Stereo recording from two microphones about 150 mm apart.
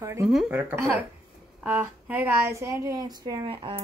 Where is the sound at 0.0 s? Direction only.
20° right (ahead or behind).